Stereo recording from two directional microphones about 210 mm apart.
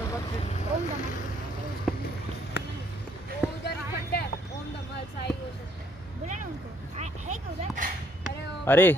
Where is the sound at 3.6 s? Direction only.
50° left (ahead or behind).